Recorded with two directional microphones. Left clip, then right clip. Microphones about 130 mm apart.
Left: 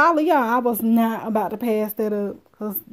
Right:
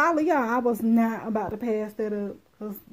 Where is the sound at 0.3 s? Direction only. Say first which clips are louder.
Left 5 dB; 15° left (ahead or behind).